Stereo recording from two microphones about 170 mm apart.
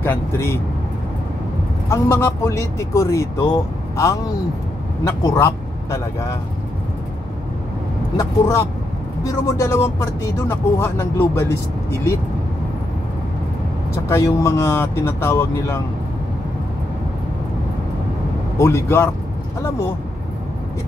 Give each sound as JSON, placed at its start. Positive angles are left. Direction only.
{"t": 0.0, "sound": "speech", "side_deg": 15}
{"t": 1.9, "sound": "a man's voice", "side_deg": 15}
{"t": 8.2, "sound": "speech", "side_deg": 15}
{"t": 14.0, "sound": "speech", "side_deg": 15}
{"t": 18.6, "sound": "speech", "side_deg": 15}